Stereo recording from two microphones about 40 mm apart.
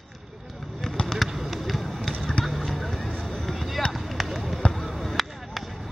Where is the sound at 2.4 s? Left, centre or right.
Left.